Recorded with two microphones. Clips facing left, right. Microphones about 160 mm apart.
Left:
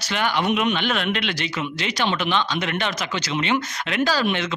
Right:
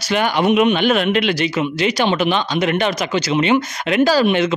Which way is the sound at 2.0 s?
45° right (ahead or behind).